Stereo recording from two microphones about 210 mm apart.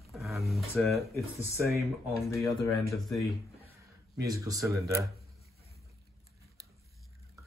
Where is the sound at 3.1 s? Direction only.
Centre (ahead or behind).